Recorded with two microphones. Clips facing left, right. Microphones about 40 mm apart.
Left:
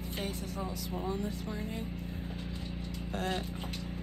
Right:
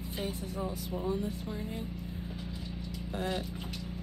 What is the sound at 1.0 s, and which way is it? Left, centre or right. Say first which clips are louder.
Speech: right 2 dB; left.